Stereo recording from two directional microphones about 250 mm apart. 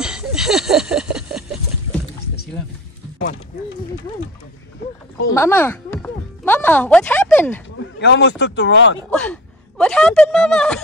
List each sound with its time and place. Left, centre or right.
0.0 s a sound: centre
5.3 s speech: centre
8.0 s speech: left
9.1 s a woman's voice: centre